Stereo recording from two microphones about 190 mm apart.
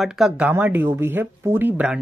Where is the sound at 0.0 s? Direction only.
Centre (ahead or behind).